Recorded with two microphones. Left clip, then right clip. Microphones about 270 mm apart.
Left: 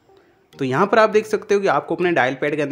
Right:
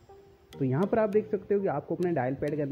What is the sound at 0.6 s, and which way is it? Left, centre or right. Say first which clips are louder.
Speech: left 12 dB; centre.